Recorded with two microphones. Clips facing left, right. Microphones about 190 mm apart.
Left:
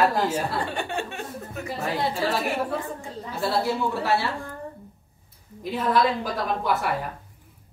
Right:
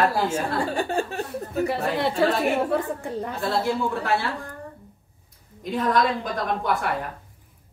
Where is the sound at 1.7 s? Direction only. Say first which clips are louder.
Even; 65° right (ahead or behind).